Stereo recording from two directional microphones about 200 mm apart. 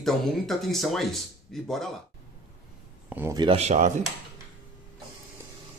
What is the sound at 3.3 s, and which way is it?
Speech, 30° right (ahead or behind).